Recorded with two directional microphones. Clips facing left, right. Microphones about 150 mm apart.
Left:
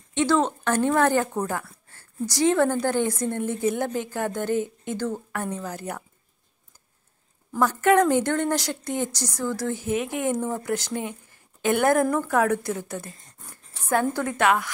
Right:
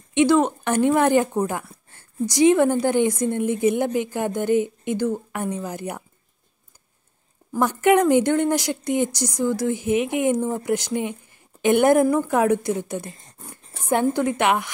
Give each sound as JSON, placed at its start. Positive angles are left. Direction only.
{"t": 0.1, "sound": "speech", "side_deg": -15}
{"t": 7.5, "sound": "speech", "side_deg": -15}